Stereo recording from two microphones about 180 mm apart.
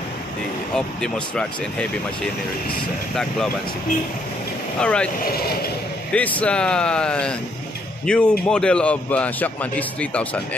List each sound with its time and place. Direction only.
0.7 s speech: 5° left (ahead or behind)
4.7 s speech: 5° left (ahead or behind)
5.3 s speech: 60° left (ahead or behind)
6.1 s a man's voice: 10° left (ahead or behind)